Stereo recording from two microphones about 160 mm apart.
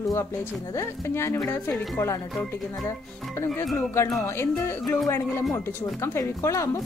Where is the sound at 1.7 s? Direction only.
Centre (ahead or behind).